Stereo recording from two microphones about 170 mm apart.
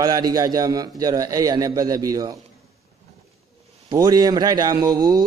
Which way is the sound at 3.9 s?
25° right (ahead or behind).